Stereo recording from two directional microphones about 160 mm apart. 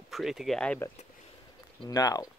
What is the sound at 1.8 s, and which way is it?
Speech, 25° left (ahead or behind).